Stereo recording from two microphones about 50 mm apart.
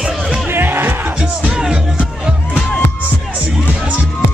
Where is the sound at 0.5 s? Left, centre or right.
Right.